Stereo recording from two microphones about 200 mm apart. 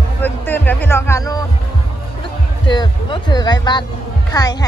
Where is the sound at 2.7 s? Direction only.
25° left (ahead or behind).